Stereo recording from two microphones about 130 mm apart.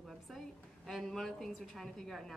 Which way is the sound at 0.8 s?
Centre (ahead or behind).